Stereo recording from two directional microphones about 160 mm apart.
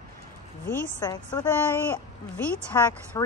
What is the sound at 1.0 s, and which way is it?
Speech, 25° left (ahead or behind).